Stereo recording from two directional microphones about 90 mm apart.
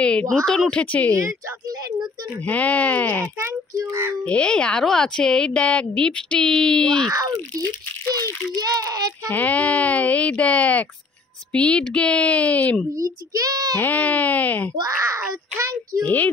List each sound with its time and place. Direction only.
0.0 s a woman's voice: 10° left (ahead or behind)
2.4 s a woman's voice: 15° left (ahead or behind)
3.4 s speech: 30° right (ahead or behind)
4.3 s a woman's voice: 10° left (ahead or behind)
7.1 s speech: 40° right (ahead or behind)
8.5 s speech: 45° right (ahead or behind)
9.3 s a woman's voice: 15° left (ahead or behind)
12.9 s a child's voice: 40° right (ahead or behind)
13.7 s a woman's voice: 20° left (ahead or behind)
14.8 s a child's voice: 40° right (ahead or behind)